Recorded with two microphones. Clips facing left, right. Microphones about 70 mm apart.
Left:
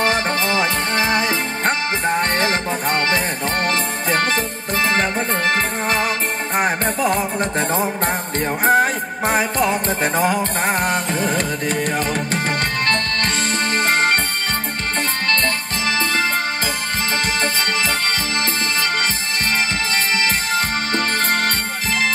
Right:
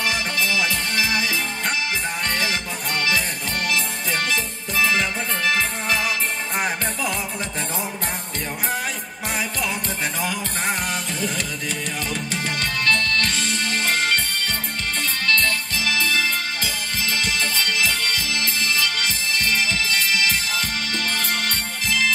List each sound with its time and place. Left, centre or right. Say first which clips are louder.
0.0 s music: left 5 dB; left
12.8 s music: left 1 dB; left
15.2 s music: right 2 dB; left
17.4 s music: left 3 dB; left
19.9 s music: left 2 dB; left